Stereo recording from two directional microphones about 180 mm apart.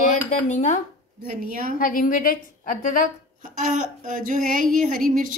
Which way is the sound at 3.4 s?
45° right (ahead or behind).